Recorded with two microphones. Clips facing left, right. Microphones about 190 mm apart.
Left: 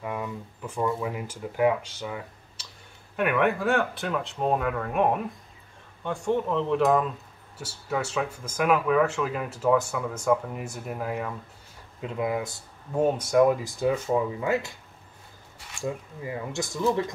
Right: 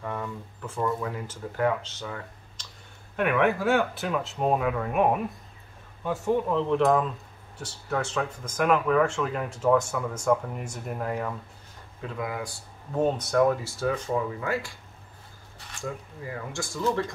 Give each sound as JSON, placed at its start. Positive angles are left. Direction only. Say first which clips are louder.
{"t": 0.0, "sound": "speech", "louder": "left 1 dB", "side_deg": 10}
{"t": 3.2, "sound": "speech", "louder": "even", "side_deg": 0}
{"t": 12.0, "sound": "speech", "louder": "left 4 dB", "side_deg": 20}
{"t": 12.9, "sound": "speech", "louder": "left 2 dB", "side_deg": 10}
{"t": 15.7, "sound": "speech", "louder": "left 3 dB", "side_deg": 15}